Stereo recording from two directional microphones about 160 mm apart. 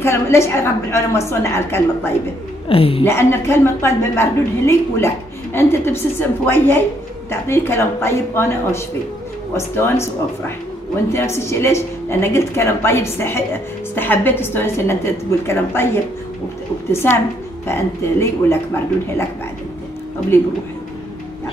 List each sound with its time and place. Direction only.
0.0 s a woman's voice: 15° left (ahead or behind)
2.7 s a woman's voice: 35° left (ahead or behind)
3.1 s a woman's voice: 15° left (ahead or behind)
11.1 s a woman's voice: 15° left (ahead or behind)
20.3 s a woman's voice: 15° left (ahead or behind)